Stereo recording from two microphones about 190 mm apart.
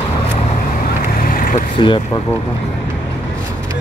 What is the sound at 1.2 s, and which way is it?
Vehicle, 45° left (ahead or behind).